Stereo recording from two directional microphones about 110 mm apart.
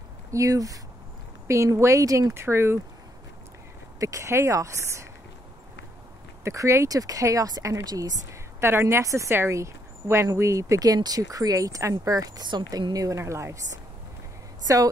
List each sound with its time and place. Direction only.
0.3 s speech: 30° right (ahead or behind)
4.0 s speech: 30° right (ahead or behind)
6.4 s speech: 25° right (ahead or behind)
8.5 s speech: 20° right (ahead or behind)
14.7 s speech: 30° right (ahead or behind)